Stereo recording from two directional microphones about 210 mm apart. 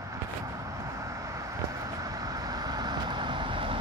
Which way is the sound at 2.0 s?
15° right (ahead or behind).